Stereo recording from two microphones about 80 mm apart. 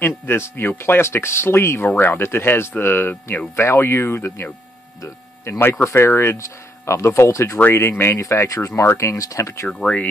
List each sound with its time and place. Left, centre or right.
0.3 s speech: left
9.7 s speech: centre